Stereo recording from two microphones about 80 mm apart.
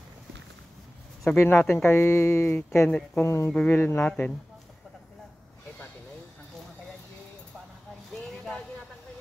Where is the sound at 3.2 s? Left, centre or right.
Left.